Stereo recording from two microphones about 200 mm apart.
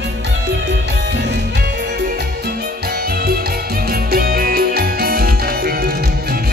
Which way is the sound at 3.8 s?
50° right (ahead or behind).